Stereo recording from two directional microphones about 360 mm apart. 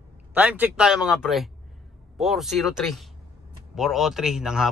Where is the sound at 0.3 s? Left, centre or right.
Centre.